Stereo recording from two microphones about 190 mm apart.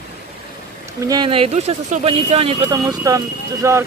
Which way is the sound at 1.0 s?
20° right (ahead or behind).